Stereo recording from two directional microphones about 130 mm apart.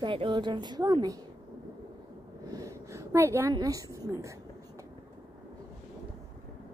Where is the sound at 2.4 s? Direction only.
25° right (ahead or behind).